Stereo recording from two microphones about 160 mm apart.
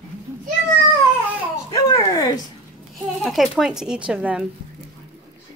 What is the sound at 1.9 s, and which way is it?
Speech, 25° left (ahead or behind).